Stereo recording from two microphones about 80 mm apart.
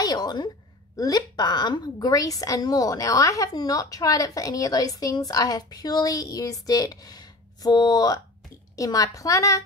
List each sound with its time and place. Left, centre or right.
0.0 s a woman's voice: left
2.0 s a woman's voice: left